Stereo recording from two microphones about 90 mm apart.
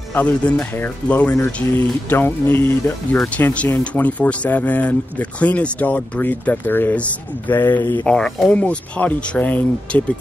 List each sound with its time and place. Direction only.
0.1 s speech: 15° left (ahead or behind)
8.1 s speech: 10° left (ahead or behind)